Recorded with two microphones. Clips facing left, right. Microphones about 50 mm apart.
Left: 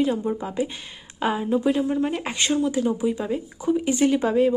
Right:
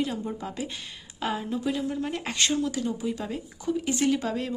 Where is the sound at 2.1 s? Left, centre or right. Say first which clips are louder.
Left 3 dB; centre.